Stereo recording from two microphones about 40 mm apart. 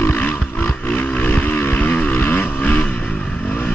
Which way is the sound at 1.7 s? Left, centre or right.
Left.